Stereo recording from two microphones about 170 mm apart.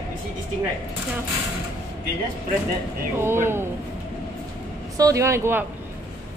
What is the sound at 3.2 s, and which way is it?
Speech, 15° right (ahead or behind).